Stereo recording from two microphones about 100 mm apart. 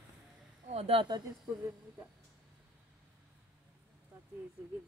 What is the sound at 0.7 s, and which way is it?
Speech, 80° right.